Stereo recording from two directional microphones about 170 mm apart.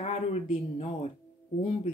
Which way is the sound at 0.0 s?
35° left (ahead or behind).